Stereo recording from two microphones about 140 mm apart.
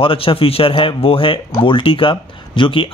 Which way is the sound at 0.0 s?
40° left (ahead or behind).